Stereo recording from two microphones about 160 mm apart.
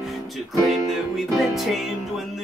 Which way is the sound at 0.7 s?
Centre (ahead or behind).